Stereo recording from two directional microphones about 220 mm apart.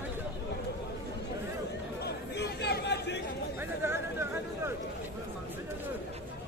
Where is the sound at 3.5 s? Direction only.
10° right (ahead or behind).